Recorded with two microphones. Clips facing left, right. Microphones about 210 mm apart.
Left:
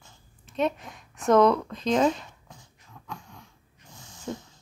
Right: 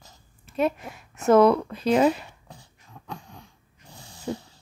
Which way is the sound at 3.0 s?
35° right (ahead or behind).